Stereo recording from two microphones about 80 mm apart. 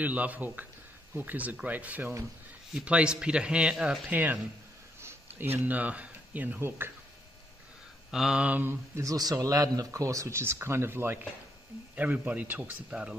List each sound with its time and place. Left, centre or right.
0.0 s a man's voice: centre
8.1 s a man's voice: centre
8.9 s speech: right
11.9 s a man's voice: centre